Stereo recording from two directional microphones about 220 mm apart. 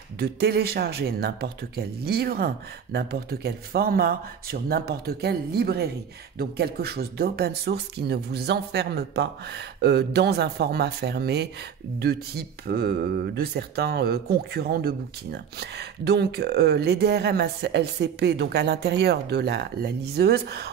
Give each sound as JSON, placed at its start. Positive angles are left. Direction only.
{"t": 0.2, "sound": "speech", "side_deg": -45}